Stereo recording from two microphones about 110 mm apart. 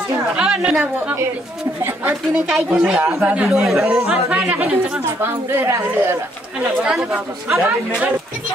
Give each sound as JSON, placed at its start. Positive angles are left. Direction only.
{"t": 0.4, "sound": "a woman's voice", "side_deg": -10}
{"t": 1.8, "sound": "a woman's voice", "side_deg": -20}
{"t": 2.5, "sound": "speech", "side_deg": -5}
{"t": 5.2, "sound": "a woman's voice", "side_deg": -20}
{"t": 6.8, "sound": "speech", "side_deg": -5}